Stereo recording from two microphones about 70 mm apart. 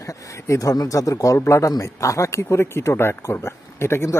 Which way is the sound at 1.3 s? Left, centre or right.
Left.